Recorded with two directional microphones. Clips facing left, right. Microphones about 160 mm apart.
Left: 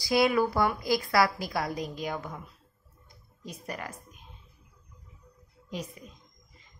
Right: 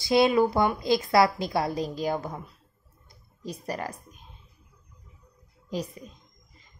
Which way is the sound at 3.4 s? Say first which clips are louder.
Right 5 dB; 35° right (ahead or behind).